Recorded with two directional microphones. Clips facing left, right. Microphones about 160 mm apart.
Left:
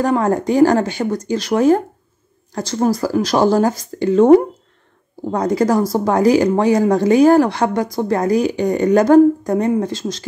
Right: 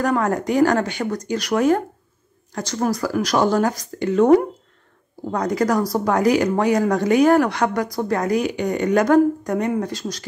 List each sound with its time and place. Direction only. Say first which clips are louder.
0.0 s speech: left 4 dB; 25° left (ahead or behind)